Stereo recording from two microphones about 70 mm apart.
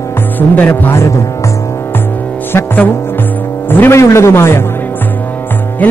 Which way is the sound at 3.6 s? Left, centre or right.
Left.